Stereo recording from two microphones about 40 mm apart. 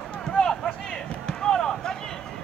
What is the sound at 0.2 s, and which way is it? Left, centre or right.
Run, centre.